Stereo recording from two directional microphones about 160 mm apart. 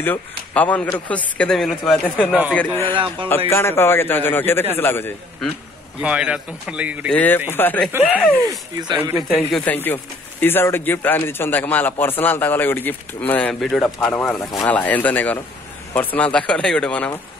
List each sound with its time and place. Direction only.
0.0 s a man's voice: 10° left (ahead or behind)
2.5 s a man's voice: 10° left (ahead or behind)
2.9 s speech: 30° right (ahead or behind)
3.4 s a man's voice: 15° left (ahead or behind)
5.9 s speech: 5° right (ahead or behind)
7.1 s a man's voice: 10° left (ahead or behind)
8.5 s speech: 25° right (ahead or behind)
9.7 s a man's voice: 10° left (ahead or behind)